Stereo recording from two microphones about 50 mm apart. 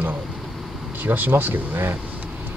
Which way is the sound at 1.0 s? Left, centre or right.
Right.